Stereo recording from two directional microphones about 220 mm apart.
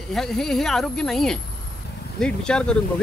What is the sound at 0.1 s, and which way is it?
Speech, centre (ahead or behind).